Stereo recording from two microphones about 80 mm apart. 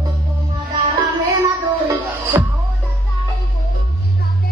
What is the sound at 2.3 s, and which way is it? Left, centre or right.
Music, right.